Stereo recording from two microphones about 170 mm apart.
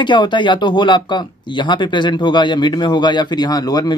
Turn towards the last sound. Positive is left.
turn(degrees=20)  # may be behind; listen again after turning